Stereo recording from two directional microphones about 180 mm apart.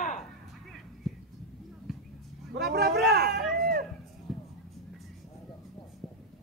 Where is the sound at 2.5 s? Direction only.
60° right (ahead or behind).